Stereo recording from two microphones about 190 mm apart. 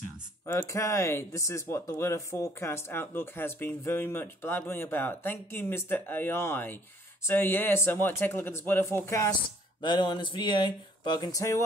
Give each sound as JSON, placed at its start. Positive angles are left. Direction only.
{"t": 0.5, "sound": "speech", "side_deg": 15}
{"t": 9.8, "sound": "speech", "side_deg": 25}